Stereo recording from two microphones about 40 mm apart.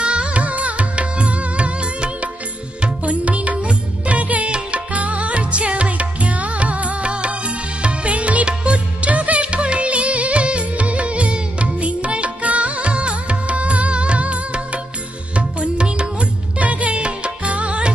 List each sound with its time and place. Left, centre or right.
0.0 s music: right